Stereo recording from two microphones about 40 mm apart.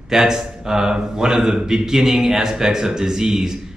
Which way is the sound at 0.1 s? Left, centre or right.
Centre.